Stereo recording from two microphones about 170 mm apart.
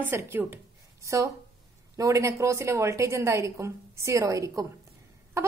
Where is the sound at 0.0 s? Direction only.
10° right (ahead or behind).